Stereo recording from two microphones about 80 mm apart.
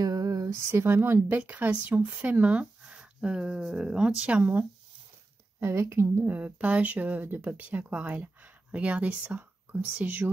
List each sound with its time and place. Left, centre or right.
0.0 s a sound: right
0.7 s speech: right
1.4 s speech: centre
5.6 s speech: right
6.2 s speech: centre